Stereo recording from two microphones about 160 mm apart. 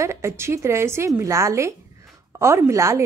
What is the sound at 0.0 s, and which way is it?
A woman's voice, 15° right (ahead or behind).